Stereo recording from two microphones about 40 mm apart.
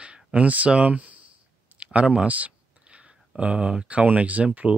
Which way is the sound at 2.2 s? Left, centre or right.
Right.